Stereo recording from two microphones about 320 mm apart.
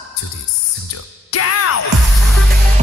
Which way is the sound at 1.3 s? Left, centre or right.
Left.